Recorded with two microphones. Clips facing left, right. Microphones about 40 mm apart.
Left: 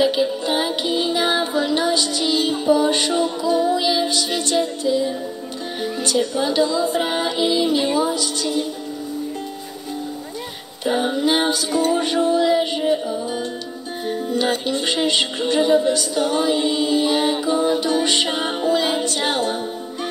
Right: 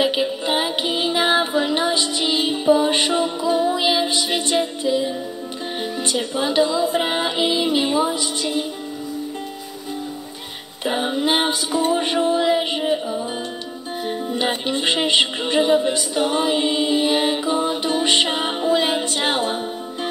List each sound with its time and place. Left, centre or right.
0.0 s music: right
6.0 s music: right
10.9 s music: centre
11.3 s music: right
14.0 s music: right